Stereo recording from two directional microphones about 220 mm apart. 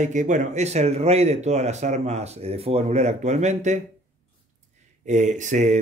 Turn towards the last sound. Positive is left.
turn(degrees=-30)  # may be behind; listen again after turning